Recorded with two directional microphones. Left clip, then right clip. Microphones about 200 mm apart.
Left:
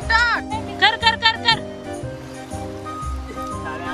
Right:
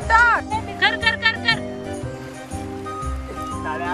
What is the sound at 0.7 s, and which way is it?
Music, 5° left (ahead or behind).